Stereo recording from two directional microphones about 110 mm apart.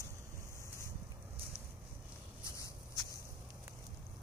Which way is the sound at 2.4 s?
30° left (ahead or behind).